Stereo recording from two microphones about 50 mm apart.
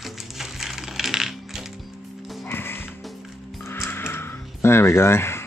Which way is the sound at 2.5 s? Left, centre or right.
Left.